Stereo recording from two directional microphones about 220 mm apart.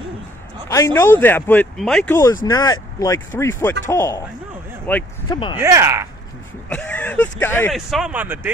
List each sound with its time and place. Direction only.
0.7 s speech: 15° left (ahead or behind)
2.4 s speech: 15° left (ahead or behind)
5.3 s speech: 20° left (ahead or behind)
5.6 s speech: 10° right (ahead or behind)
6.7 s speech: 5° left (ahead or behind)
7.7 s speech: centre (ahead or behind)